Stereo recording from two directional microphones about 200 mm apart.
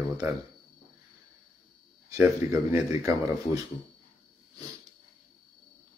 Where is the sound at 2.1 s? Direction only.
15° right (ahead or behind).